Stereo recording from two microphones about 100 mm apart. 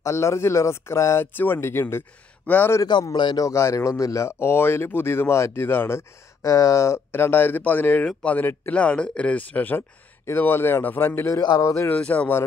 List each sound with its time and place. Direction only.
0.0 s speech: 30° left (ahead or behind)
2.8 s a man's voice: 40° left (ahead or behind)
3.4 s speech: 30° left (ahead or behind)
12.0 s speech: 15° left (ahead or behind)